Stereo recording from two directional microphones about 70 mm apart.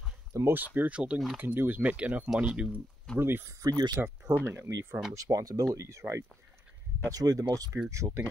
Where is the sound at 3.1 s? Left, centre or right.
Right.